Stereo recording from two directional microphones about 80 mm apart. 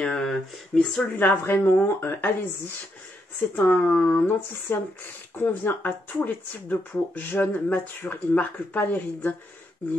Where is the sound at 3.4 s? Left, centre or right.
Left.